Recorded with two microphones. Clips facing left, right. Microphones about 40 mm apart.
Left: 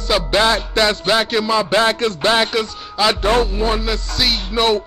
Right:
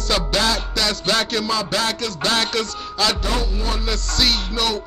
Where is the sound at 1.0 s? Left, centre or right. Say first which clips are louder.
Left 4 dB; centre.